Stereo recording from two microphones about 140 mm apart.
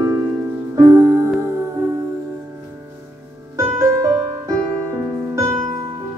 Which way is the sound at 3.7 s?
25° right (ahead or behind).